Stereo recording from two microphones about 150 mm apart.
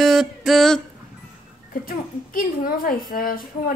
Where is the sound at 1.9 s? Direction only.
75° left (ahead or behind).